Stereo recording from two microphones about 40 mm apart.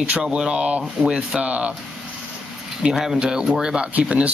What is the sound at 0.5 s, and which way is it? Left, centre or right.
Speech, right.